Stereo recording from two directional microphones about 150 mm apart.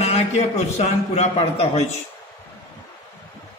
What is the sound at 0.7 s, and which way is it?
A man's voice, 45° left (ahead or behind).